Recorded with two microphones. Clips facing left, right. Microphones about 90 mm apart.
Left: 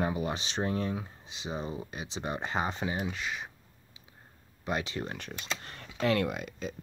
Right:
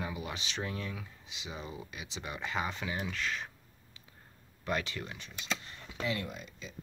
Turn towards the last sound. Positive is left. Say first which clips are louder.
# left 8 dB
turn(degrees=75)  # may be behind; listen again after turning